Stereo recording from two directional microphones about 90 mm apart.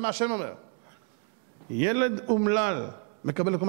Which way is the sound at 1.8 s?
15° right (ahead or behind).